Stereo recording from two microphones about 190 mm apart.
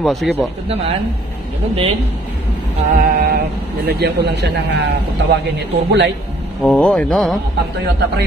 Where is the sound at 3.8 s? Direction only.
55° right (ahead or behind).